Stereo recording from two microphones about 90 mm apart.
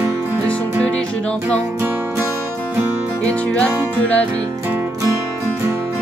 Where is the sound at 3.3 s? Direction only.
15° left (ahead or behind).